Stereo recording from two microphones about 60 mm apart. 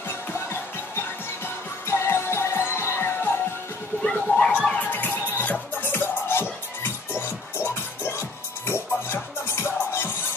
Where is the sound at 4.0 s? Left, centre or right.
Centre.